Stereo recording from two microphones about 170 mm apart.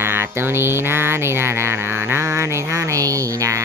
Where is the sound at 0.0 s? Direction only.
15° right (ahead or behind).